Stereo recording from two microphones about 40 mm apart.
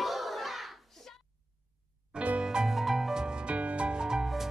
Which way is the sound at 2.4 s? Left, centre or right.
Centre.